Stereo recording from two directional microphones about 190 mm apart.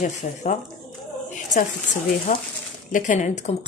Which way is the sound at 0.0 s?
40° left (ahead or behind).